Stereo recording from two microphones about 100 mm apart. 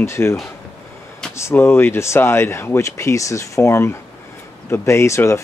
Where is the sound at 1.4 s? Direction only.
25° left (ahead or behind).